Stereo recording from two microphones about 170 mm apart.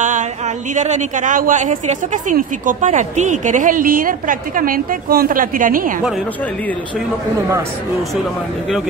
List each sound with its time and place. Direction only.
0.7 s speech: 45° right (ahead or behind)